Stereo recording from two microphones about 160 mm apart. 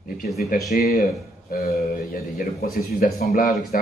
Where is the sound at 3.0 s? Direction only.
60° left (ahead or behind).